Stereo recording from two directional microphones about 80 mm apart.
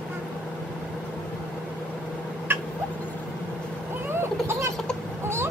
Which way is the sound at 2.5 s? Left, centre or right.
Right.